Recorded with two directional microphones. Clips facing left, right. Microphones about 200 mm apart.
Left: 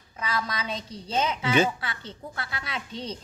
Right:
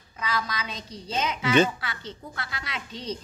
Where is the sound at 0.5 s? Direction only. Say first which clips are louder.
Left 2 dB; 30° left (ahead or behind).